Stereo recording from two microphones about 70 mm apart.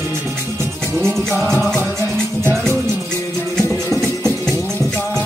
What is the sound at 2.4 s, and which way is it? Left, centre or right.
Music, right.